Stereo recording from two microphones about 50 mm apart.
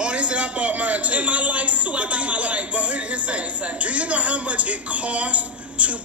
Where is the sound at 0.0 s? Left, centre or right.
Right.